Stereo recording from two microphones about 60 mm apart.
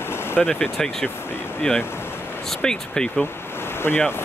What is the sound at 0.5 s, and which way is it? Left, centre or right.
Speech, centre.